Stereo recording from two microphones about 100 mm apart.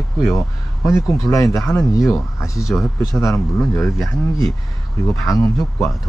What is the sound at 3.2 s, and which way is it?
Speech, 30° left (ahead or behind).